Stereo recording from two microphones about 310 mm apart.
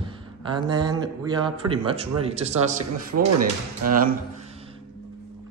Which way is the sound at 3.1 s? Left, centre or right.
Right.